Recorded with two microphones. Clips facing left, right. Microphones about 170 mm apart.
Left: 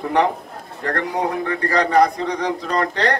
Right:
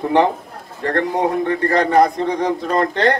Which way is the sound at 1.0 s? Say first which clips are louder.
Right 5 dB; centre (ahead or behind).